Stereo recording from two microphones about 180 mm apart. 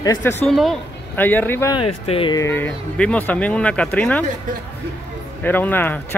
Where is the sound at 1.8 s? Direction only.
30° left (ahead or behind).